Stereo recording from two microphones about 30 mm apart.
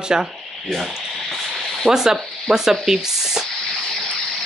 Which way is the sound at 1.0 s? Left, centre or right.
Centre.